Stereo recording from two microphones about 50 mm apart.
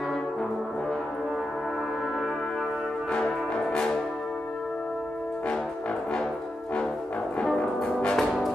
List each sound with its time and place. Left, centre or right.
3.5 s music: centre
7.8 s music: centre
8.2 s brass instrument: centre